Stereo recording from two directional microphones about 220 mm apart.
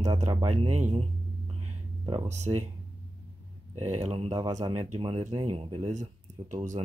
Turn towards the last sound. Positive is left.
turn(degrees=-30)  # may be behind; listen again after turning